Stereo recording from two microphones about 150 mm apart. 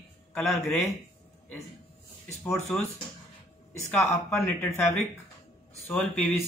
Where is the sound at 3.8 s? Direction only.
15° left (ahead or behind).